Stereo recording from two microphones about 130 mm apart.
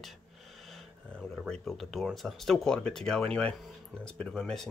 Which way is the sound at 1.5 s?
5° left (ahead or behind).